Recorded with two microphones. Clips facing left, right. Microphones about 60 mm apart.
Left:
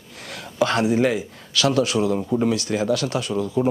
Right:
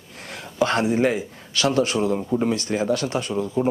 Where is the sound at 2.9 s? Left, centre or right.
Right.